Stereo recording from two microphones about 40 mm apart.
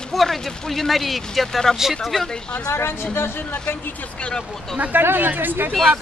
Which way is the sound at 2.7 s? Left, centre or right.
Left.